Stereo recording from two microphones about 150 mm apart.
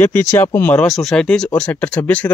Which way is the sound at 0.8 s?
Centre (ahead or behind).